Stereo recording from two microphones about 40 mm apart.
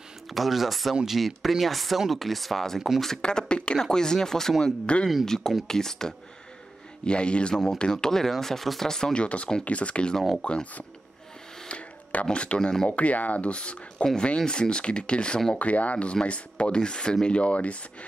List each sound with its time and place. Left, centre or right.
0.3 s speech: centre
3.2 s speech: left
3.8 s speech: centre
7.1 s speech: left
7.9 s speech: centre
9.1 s speech: left
11.7 s a sound: left
12.3 s speech: left
12.9 s speech: left
15.6 s speech: left